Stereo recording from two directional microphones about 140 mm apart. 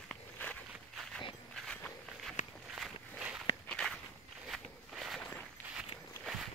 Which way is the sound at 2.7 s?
5° right (ahead or behind).